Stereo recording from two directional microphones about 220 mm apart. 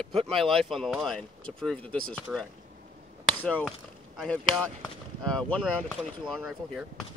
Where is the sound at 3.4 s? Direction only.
5° left (ahead or behind).